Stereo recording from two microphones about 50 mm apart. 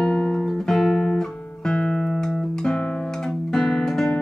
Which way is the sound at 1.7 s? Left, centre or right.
Centre.